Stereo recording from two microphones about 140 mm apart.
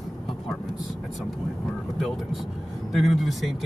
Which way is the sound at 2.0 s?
Centre (ahead or behind).